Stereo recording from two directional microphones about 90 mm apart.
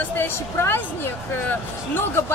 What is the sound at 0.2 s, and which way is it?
A woman's voice, 25° left (ahead or behind).